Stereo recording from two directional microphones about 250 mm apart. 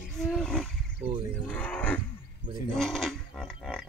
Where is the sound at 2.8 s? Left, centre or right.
Centre.